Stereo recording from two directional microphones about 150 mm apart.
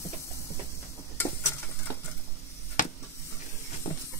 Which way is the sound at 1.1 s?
15° left (ahead or behind).